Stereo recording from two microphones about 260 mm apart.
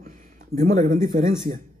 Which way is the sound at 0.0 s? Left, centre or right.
Right.